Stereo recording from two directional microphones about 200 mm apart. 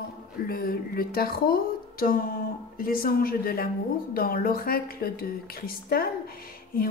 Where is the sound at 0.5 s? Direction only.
50° left (ahead or behind).